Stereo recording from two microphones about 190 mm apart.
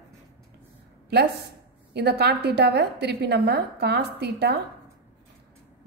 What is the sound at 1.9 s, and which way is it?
A woman's voice, 60° right (ahead or behind).